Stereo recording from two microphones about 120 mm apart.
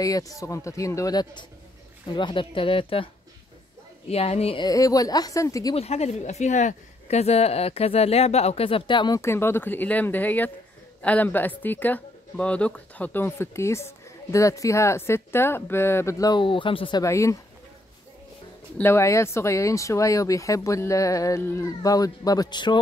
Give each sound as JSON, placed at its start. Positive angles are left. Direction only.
{"t": 0.0, "sound": "speech", "side_deg": 30}
{"t": 2.1, "sound": "speech", "side_deg": 45}
{"t": 4.1, "sound": "speech", "side_deg": 60}
{"t": 4.6, "sound": "speech", "side_deg": 30}
{"t": 5.8, "sound": "speech", "side_deg": 65}
{"t": 9.2, "sound": "speech", "side_deg": 20}
{"t": 16.4, "sound": "speech", "side_deg": 45}
{"t": 17.0, "sound": "speech", "side_deg": 25}
{"t": 18.8, "sound": "speech", "side_deg": 20}